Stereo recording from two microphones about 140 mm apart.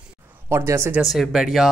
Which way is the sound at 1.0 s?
Centre (ahead or behind).